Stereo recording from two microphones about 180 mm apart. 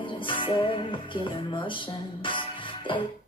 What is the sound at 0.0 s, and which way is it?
Music, 25° left (ahead or behind).